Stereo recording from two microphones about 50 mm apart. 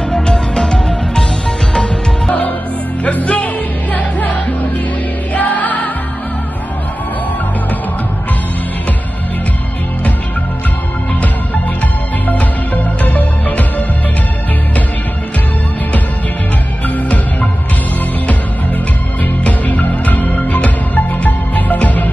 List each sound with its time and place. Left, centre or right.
0.1 s music: centre
3.0 s music: left
13.0 s music: left
16.8 s music: left
19.4 s music: left